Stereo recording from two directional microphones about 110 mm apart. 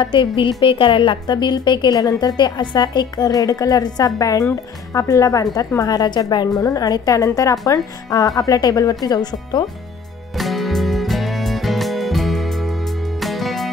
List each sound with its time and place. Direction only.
0.0 s a woman's voice: 50° left (ahead or behind)
10.3 s music: centre (ahead or behind)